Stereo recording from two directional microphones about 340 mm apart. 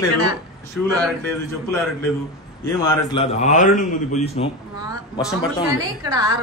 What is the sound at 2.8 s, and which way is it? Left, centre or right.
A man's voice, centre.